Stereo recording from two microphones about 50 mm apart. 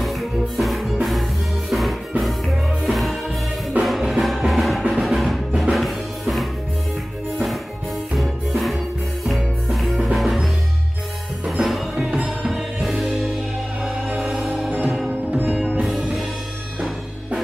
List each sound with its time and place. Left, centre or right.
0.0 s music: centre
8.2 s music: centre
15.0 s sitar: right
15.8 s music: centre